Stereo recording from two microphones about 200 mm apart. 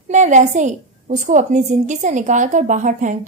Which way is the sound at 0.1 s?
35° right (ahead or behind).